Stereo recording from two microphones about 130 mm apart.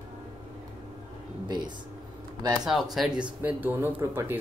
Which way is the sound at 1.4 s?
35° right (ahead or behind).